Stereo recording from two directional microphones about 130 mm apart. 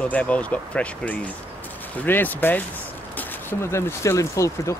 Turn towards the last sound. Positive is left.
turn(degrees=25)  # may be behind; listen again after turning